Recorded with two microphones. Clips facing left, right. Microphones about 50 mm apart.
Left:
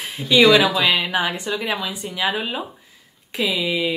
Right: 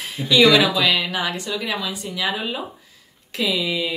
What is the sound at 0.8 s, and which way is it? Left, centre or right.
A woman's voice, left.